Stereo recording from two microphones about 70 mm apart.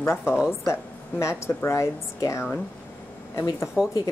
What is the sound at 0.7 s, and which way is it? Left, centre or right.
Speech, left.